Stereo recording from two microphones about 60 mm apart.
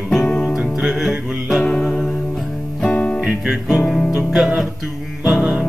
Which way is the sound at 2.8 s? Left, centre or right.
Centre.